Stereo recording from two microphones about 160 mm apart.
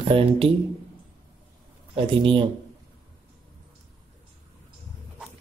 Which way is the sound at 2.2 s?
35° right (ahead or behind).